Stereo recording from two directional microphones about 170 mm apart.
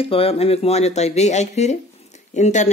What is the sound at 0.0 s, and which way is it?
Speech, 35° left (ahead or behind).